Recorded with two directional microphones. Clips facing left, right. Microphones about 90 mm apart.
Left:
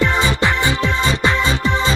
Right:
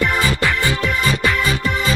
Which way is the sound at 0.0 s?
25° left (ahead or behind).